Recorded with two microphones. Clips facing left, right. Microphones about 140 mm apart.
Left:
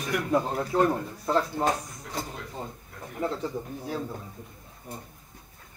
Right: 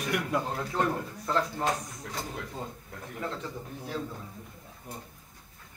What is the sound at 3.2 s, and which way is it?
Speech, 35° left (ahead or behind).